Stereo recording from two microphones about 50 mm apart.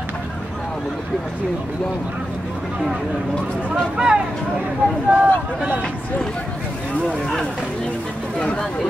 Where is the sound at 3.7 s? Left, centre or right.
Centre.